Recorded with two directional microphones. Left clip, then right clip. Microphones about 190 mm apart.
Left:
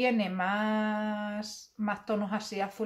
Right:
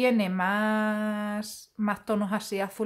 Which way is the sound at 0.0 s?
45° right (ahead or behind).